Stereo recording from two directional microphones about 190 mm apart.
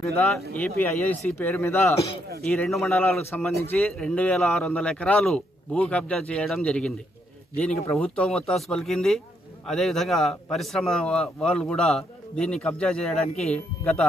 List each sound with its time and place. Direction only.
0.6 s a man's voice: 10° left (ahead or behind)